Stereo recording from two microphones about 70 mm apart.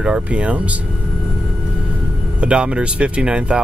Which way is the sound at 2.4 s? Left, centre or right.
Centre.